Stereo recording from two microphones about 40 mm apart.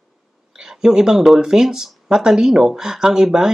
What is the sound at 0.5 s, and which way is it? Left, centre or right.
Speech, centre.